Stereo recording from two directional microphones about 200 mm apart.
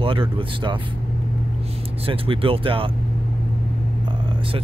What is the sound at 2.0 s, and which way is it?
Speech, 25° right (ahead or behind).